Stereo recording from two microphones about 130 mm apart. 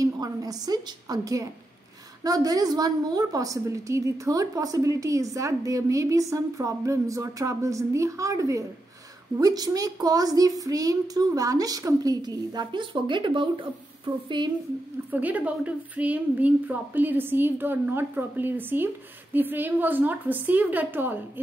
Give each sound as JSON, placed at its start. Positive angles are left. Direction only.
{"t": 0.0, "sound": "a woman's voice", "side_deg": -30}
{"t": 15.0, "sound": "a woman's voice", "side_deg": -15}